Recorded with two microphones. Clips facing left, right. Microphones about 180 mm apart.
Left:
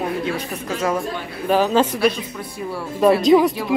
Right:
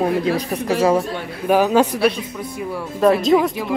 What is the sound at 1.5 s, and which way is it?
Speech, 10° right (ahead or behind).